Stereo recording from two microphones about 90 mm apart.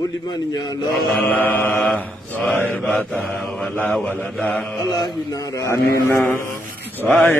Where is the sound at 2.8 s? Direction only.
5° left (ahead or behind); by 4.3 s 20° left (ahead or behind).